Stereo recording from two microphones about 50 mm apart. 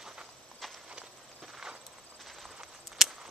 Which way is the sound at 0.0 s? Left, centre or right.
Centre.